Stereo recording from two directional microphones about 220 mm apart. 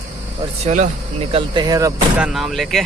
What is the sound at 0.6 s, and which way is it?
Speech, 30° right (ahead or behind).